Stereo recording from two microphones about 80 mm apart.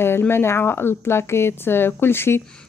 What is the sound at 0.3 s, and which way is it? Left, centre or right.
A woman's voice, left.